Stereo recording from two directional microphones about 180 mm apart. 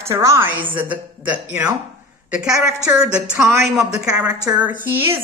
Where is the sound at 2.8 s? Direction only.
5° right (ahead or behind).